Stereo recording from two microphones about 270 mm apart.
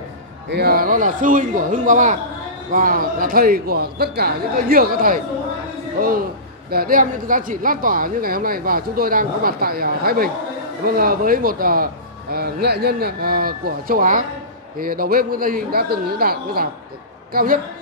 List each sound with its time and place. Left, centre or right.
0.5 s a man's voice: right